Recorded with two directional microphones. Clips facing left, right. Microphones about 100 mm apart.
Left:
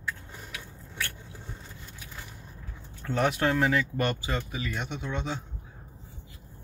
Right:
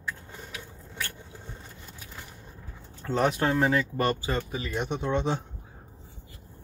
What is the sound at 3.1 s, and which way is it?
Speech, 30° right (ahead or behind).